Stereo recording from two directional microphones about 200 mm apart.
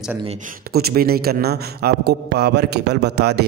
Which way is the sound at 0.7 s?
50° right (ahead or behind).